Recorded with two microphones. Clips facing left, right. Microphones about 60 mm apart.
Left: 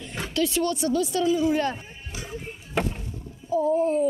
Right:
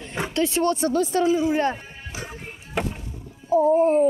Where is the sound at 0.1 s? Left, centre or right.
Right.